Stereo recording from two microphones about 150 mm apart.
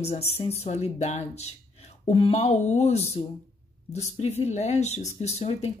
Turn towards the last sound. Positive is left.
turn(degrees=45)  # may be behind; listen again after turning